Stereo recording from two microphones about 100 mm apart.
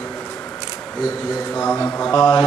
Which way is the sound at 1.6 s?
30° left (ahead or behind).